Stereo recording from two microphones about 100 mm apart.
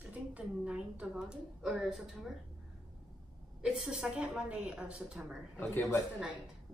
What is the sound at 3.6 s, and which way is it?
A woman's voice, 5° right (ahead or behind).